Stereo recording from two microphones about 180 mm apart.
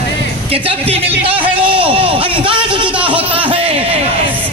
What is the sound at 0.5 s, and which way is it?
A man's voice, 30° right (ahead or behind).